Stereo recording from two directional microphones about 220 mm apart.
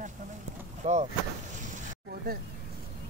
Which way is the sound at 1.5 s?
35° right (ahead or behind).